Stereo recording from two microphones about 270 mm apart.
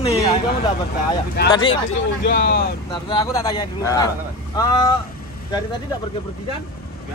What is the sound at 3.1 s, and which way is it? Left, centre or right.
Speech, centre.